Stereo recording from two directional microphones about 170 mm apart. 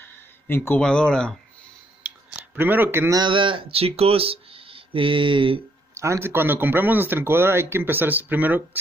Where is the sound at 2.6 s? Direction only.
10° right (ahead or behind); by 5.6 s 30° right (ahead or behind).